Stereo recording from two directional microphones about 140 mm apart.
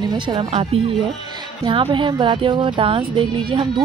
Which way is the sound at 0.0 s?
30° right (ahead or behind).